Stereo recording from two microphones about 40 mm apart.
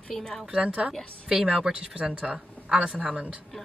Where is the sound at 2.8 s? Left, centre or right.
Right.